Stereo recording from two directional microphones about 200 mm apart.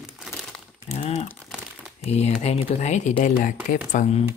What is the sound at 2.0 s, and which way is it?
Speech, 35° left (ahead or behind).